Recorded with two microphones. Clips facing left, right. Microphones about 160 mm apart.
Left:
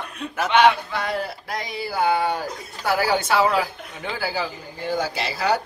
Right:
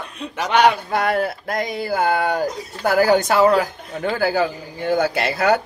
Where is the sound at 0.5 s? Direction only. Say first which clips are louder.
Right 1 dB; 45° right (ahead or behind).